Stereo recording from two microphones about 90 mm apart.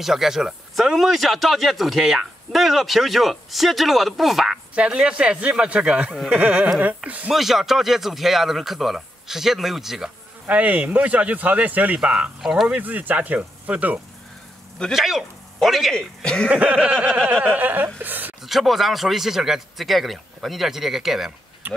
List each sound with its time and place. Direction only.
0.0 s speech: 5° right (ahead or behind)
7.3 s speech: 5° right (ahead or behind)
10.4 s speech: 15° right (ahead or behind)
12.6 s speech: 15° right (ahead or behind)
14.8 s speech: centre (ahead or behind)
16.4 s speech: 15° right (ahead or behind)
18.4 s speech: centre (ahead or behind)
21.6 s speech: 20° right (ahead or behind)